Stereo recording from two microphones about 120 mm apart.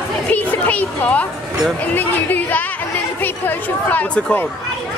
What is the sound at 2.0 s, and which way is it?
Speech, 15° left (ahead or behind).